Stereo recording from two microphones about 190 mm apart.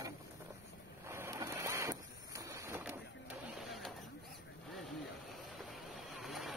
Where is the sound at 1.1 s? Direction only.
15° right (ahead or behind).